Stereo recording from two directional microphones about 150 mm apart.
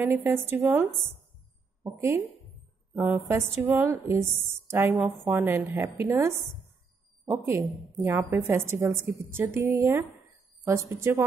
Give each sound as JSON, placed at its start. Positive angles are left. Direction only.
{"t": 0.0, "sound": "a woman's voice", "side_deg": -15}
{"t": 8.0, "sound": "a woman's voice", "side_deg": -15}